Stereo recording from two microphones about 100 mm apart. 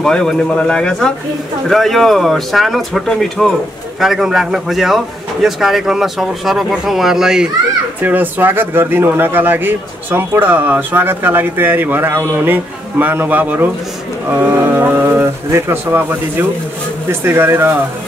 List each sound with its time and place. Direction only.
0.0 s speech: 5° left (ahead or behind)
8.0 s speech: 20° right (ahead or behind)